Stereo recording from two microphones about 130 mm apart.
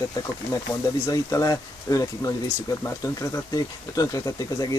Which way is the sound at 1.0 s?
25° left (ahead or behind).